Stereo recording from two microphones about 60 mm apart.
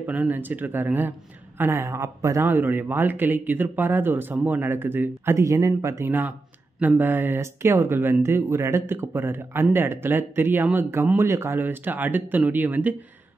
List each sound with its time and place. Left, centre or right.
0.0 s speech: right
1.7 s a man's voice: right
2.4 s speech: right
5.4 s a man's voice: right
6.0 s speech: right
7.3 s speech: right
8.9 s speech: right
11.5 s speech: right